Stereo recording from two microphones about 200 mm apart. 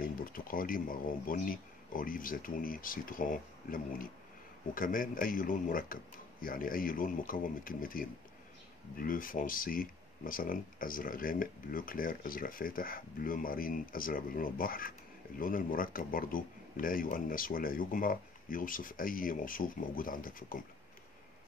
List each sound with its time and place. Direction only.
0.2 s speech: 45° left (ahead or behind)